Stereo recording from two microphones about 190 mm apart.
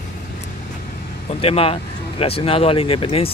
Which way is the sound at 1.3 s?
30° left (ahead or behind).